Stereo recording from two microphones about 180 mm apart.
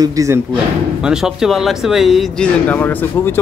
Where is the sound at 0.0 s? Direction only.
15° right (ahead or behind).